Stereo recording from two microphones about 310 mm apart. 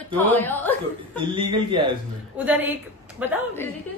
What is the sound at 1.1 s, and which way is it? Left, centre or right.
A woman's voice, centre.